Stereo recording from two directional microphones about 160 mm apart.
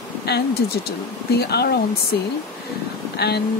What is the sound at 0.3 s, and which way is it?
Speech, 90° left.